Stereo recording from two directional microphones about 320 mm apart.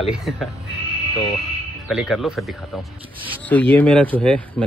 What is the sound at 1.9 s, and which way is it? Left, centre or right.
A man's voice, centre.